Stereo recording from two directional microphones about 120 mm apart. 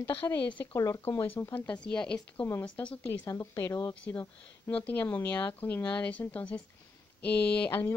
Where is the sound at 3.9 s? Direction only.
10° left (ahead or behind).